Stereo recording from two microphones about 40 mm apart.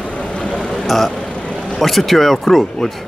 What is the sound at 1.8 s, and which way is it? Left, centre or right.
A man's voice, centre.